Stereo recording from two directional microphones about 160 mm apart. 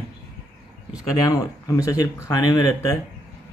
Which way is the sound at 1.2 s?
20° left (ahead or behind).